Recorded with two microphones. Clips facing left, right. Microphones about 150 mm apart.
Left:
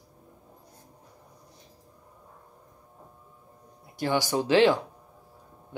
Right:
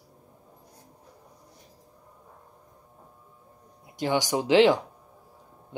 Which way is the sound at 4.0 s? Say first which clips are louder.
Even; 15° right (ahead or behind).